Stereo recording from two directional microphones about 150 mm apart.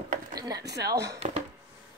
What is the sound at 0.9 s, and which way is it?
Speech, 20° right (ahead or behind).